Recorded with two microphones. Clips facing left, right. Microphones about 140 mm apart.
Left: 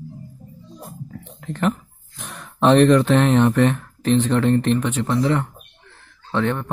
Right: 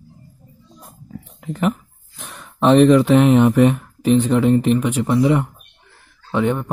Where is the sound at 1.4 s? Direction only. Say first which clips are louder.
Right 1 dB; 5° right (ahead or behind).